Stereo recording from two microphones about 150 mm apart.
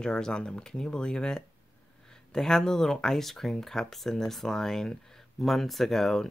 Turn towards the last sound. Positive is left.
turn(degrees=0)  # may be behind; listen again after turning